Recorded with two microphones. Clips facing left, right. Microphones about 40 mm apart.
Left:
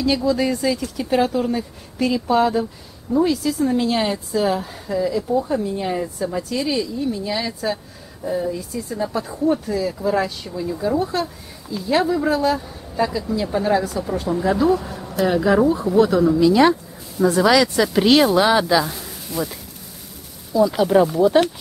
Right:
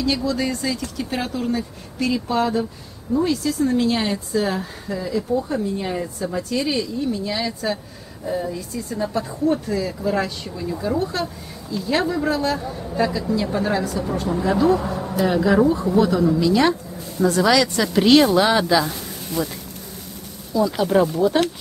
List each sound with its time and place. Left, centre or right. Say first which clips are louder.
0.0 s speech: left 3 dB; centre
15.0 s a sound: right 1 dB; right
15.2 s speech: left 1 dB; centre
20.5 s speech: left 3 dB; centre